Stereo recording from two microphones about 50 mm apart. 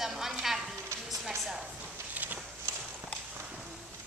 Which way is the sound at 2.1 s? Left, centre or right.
Right.